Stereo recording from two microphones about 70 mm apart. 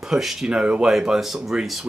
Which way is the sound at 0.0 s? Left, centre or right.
Centre.